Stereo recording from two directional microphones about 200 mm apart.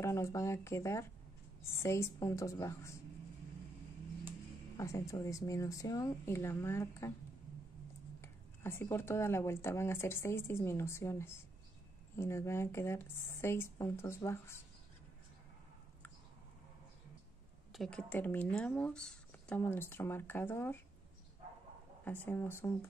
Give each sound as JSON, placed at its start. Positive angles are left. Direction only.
{"t": 0.0, "sound": "speech", "side_deg": 15}
{"t": 4.7, "sound": "speech", "side_deg": 15}
{"t": 8.2, "sound": "speech", "side_deg": 10}
{"t": 17.7, "sound": "speech", "side_deg": 5}
{"t": 22.0, "sound": "speech", "side_deg": 10}